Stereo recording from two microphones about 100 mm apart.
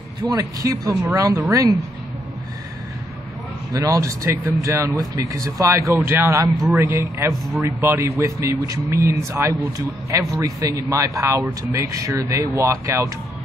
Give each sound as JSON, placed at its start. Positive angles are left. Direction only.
{"t": 0.3, "sound": "speech", "side_deg": -35}
{"t": 3.7, "sound": "a man's voice", "side_deg": -35}